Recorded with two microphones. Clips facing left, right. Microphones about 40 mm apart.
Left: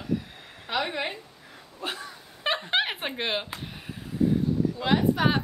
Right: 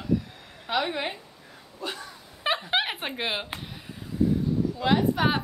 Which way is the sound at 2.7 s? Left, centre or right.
Centre.